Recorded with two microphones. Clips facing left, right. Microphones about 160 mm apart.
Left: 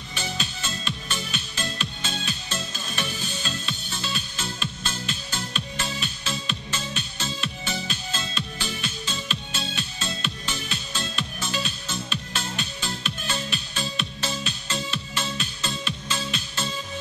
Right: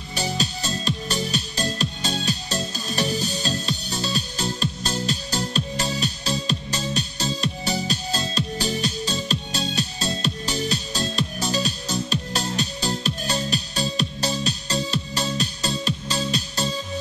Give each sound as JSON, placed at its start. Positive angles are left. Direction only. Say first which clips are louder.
{"t": 0.1, "sound": "music", "louder": "right 6 dB", "side_deg": -35}